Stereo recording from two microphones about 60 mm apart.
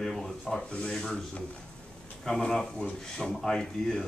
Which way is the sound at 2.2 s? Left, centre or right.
Centre.